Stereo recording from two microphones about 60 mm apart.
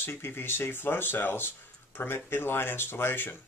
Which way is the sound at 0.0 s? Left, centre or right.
Left.